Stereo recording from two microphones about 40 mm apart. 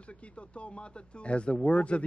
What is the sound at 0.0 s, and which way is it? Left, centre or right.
Speech, left.